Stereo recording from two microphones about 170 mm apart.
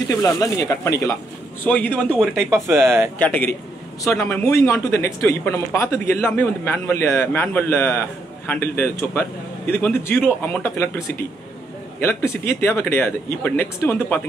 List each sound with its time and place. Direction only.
0.1 s speech: 20° left (ahead or behind)
2.3 s speech: 15° right (ahead or behind)
3.2 s speech: 10° left (ahead or behind)
12.0 s speech: 15° left (ahead or behind)